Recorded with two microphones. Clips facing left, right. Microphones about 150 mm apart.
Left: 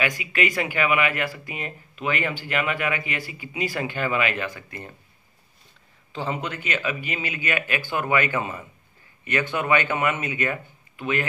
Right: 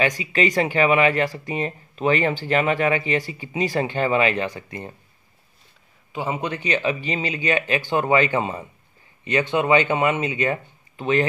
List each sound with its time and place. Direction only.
0.2 s speech: 35° right (ahead or behind)
6.1 s speech: 15° right (ahead or behind)